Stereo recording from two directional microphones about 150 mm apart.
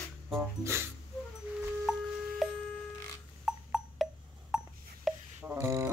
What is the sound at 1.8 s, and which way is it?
Music, centre (ahead or behind).